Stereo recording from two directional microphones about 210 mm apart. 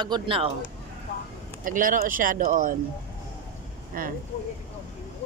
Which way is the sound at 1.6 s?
40° right (ahead or behind).